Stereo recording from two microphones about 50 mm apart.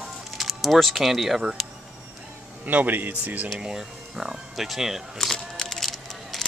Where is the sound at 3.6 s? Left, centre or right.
Centre.